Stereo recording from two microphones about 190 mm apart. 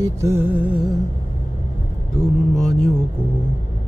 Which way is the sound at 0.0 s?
15° right (ahead or behind).